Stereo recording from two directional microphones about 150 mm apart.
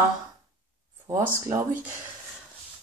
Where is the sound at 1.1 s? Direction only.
15° right (ahead or behind).